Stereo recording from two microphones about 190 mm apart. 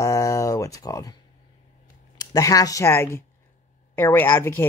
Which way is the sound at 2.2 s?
20° left (ahead or behind).